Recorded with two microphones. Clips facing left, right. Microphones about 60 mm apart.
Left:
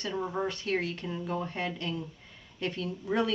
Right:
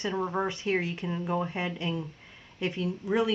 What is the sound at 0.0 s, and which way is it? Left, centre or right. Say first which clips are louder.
Speech: right 3 dB; right.